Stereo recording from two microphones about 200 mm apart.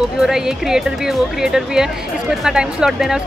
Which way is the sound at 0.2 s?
Centre (ahead or behind).